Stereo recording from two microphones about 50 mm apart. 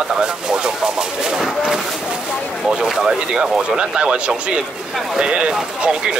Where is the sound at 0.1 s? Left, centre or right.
Centre.